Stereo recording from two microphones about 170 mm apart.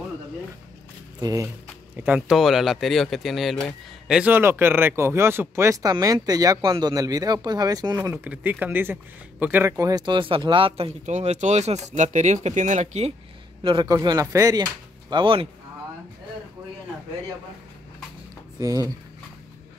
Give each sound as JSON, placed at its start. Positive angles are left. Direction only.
{"t": 1.2, "sound": "speech", "side_deg": -20}
{"t": 2.0, "sound": "speech", "side_deg": -10}
{"t": 13.6, "sound": "a man's voice", "side_deg": -30}
{"t": 13.8, "sound": "speech", "side_deg": -20}
{"t": 18.6, "sound": "speech", "side_deg": -20}